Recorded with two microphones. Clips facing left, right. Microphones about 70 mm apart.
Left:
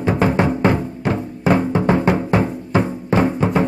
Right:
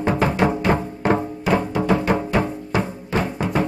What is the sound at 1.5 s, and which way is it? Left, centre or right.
Music, left.